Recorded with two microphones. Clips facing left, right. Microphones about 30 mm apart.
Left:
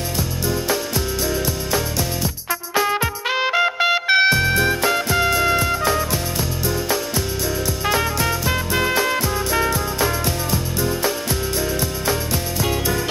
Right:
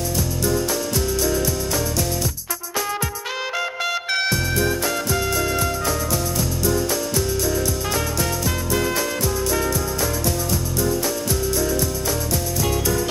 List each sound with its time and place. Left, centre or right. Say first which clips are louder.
0.5 s music: left 1 dB; left